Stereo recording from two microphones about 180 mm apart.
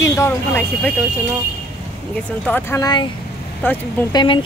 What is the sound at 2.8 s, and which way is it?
Speech, 25° left (ahead or behind).